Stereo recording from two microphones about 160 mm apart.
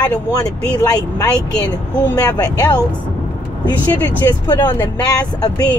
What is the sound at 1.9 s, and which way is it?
Speech, 10° left (ahead or behind).